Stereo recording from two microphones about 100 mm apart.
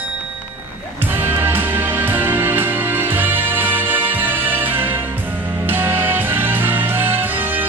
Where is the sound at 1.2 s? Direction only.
20° right (ahead or behind).